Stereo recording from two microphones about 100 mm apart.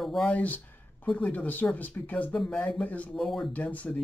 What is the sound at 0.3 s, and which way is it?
Speech, 15° left (ahead or behind).